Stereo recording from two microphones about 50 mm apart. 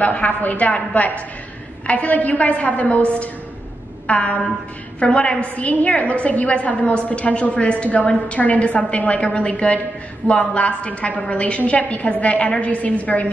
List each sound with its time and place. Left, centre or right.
0.0 s a woman's voice: left
4.1 s a woman's voice: left